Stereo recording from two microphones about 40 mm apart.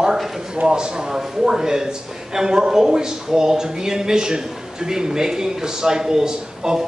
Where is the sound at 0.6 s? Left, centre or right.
Centre.